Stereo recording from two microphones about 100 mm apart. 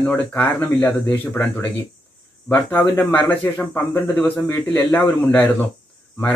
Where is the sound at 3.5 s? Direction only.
20° left (ahead or behind).